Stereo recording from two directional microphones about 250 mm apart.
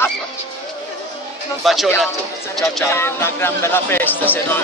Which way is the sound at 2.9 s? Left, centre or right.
Centre.